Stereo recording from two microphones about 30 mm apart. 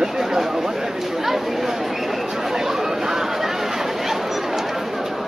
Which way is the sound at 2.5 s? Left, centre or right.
Centre.